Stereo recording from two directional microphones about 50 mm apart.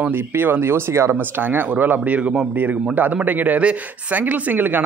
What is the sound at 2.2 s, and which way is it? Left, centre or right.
Speech, centre.